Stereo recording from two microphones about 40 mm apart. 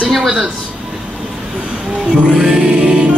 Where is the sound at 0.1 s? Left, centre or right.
Centre.